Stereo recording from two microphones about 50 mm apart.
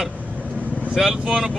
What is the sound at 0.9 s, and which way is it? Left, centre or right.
Speech, centre.